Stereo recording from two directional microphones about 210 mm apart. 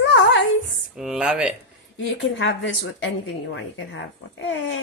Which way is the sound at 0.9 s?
5° right (ahead or behind).